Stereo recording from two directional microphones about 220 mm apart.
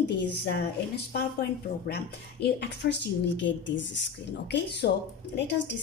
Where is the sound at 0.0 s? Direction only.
55° left (ahead or behind).